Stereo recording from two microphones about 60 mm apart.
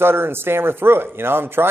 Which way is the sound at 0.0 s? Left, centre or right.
Right.